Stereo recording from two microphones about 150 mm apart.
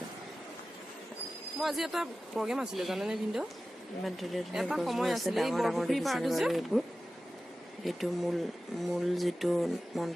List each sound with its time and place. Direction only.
1.6 s speech: centre (ahead or behind)
7.8 s speech: centre (ahead or behind)